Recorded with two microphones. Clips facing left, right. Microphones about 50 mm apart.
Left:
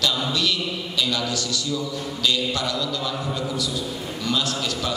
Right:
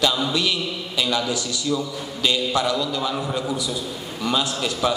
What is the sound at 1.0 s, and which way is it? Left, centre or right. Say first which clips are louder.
A man's voice: right 2 dB; centre.